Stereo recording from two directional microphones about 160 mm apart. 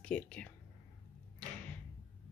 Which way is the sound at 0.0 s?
5° left (ahead or behind).